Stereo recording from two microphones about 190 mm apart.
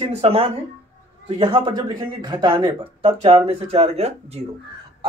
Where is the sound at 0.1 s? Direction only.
30° right (ahead or behind).